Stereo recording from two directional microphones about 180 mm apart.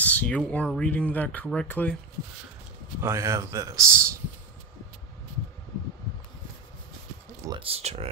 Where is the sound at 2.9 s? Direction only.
15° right (ahead or behind).